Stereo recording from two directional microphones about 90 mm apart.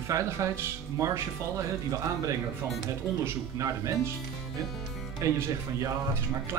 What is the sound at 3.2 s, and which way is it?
Speech, 35° right (ahead or behind).